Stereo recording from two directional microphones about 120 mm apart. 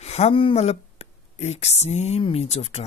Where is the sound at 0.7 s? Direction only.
65° left (ahead or behind).